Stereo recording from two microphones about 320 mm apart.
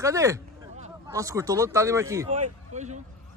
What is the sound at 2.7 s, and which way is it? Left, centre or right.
Speech, right.